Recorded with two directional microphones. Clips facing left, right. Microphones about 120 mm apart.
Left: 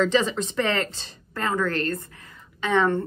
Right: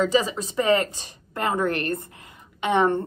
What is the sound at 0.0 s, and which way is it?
A woman's voice, 5° right (ahead or behind).